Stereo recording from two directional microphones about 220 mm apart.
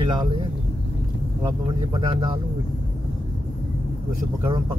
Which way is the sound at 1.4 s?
20° right (ahead or behind).